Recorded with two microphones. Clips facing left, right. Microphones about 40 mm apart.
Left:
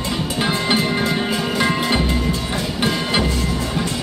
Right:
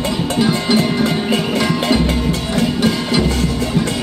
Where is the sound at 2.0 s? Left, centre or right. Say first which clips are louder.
Right 3 dB; right.